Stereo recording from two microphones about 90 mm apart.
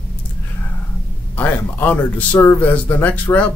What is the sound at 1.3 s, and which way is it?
A man's voice, 20° left (ahead or behind).